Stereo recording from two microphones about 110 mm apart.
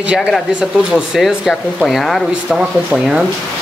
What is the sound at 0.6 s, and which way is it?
Speech, 5° right (ahead or behind).